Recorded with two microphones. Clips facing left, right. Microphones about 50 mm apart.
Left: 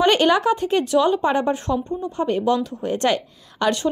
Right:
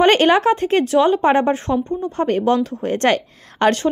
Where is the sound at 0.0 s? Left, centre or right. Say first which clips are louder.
Right 3 dB; right.